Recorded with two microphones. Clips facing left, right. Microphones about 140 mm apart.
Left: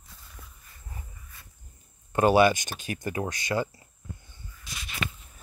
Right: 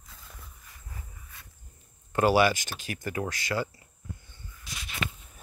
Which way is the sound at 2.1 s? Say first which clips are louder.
Left 3 dB; 25° left (ahead or behind).